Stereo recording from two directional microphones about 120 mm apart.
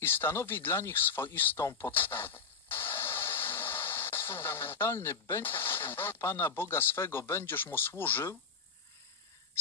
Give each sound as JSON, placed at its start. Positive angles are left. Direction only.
{"t": 0.0, "sound": "speech", "side_deg": 20}